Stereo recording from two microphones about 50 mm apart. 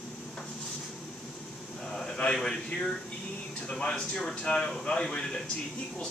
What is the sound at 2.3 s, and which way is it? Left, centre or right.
Speech, centre.